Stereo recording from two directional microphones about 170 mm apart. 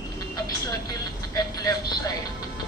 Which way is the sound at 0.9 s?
20° left (ahead or behind).